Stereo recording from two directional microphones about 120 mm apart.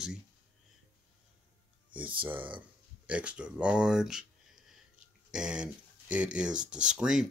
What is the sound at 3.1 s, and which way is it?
Speech, 10° right (ahead or behind).